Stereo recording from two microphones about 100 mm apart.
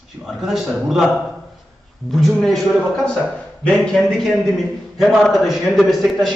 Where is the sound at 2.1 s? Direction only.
Centre (ahead or behind).